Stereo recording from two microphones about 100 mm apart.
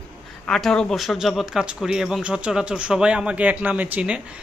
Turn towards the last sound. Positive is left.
turn(degrees=-15)  # may be behind; listen again after turning